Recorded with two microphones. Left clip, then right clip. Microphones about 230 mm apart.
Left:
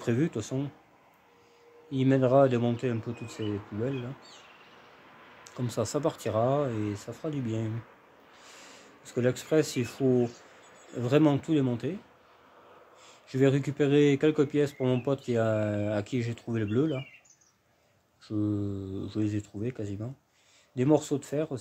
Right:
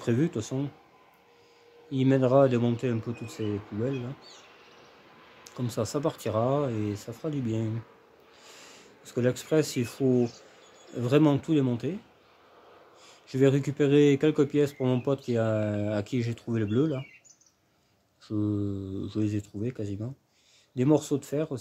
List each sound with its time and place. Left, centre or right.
0.0 s speech: centre
1.9 s speech: centre
3.9 s a sound: right
5.4 s speech: centre
8.4 s a sound: centre
11.0 s speech: centre
13.0 s speech: centre
18.2 s speech: centre